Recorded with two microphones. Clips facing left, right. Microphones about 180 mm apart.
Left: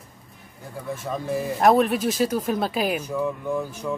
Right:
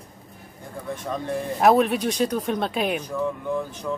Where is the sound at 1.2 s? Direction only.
5° left (ahead or behind).